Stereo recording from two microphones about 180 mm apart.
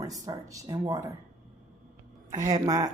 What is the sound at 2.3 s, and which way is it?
Speech, 20° right (ahead or behind).